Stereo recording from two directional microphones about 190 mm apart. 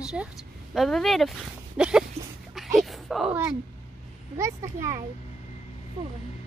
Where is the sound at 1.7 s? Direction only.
5° right (ahead or behind).